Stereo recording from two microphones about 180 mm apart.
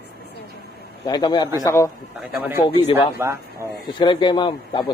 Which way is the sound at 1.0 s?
25° left (ahead or behind).